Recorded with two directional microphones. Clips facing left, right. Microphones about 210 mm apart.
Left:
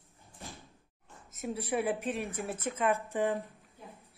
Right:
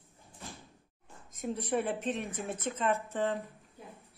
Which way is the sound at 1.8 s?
10° left (ahead or behind).